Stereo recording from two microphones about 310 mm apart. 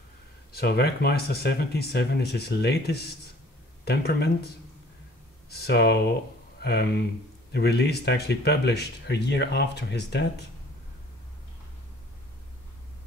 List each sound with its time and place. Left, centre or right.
0.5 s speech: left
5.5 s speech: left